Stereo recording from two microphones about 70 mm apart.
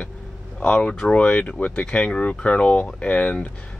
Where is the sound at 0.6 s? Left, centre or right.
Centre.